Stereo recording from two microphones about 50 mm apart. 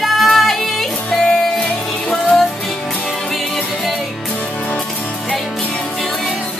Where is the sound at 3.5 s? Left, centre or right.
Centre.